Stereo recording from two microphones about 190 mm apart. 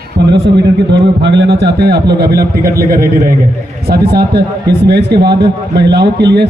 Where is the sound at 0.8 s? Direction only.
65° right (ahead or behind).